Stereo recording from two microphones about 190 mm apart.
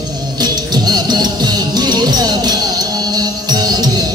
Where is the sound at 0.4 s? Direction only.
20° right (ahead or behind).